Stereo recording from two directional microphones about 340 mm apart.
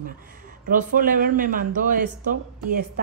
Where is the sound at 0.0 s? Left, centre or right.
Right.